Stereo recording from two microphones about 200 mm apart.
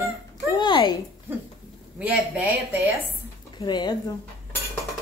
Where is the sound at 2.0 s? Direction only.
5° right (ahead or behind).